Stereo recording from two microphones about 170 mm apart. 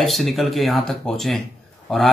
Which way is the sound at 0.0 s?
Centre (ahead or behind).